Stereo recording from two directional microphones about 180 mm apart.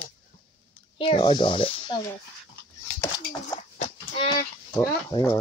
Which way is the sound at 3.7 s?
35° left (ahead or behind).